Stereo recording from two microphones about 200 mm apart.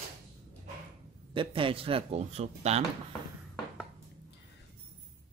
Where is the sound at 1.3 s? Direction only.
25° right (ahead or behind).